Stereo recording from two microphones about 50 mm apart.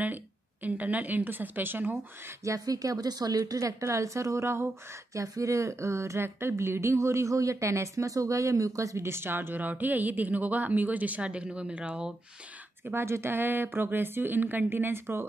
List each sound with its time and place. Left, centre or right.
0.0 s a woman's voice: right
2.4 s a woman's voice: right
3.6 s a woman's voice: right
5.1 s a woman's voice: right
12.9 s a woman's voice: right